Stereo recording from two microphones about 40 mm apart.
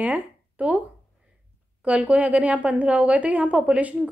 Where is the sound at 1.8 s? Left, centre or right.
Right.